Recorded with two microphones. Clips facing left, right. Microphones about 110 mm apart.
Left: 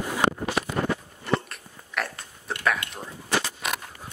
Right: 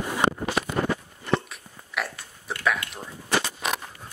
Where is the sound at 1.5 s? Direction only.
Centre (ahead or behind).